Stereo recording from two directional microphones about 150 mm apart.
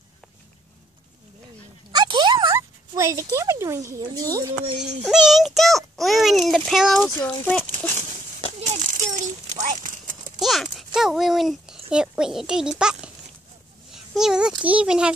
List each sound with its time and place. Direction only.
1.9 s speech: 30° right (ahead or behind)
5.0 s a child's voice: 5° right (ahead or behind)
8.5 s a sound: 50° right (ahead or behind)
10.4 s speech: centre (ahead or behind)
13.9 s a sound: 5° right (ahead or behind)
14.6 s a child's voice: 10° right (ahead or behind)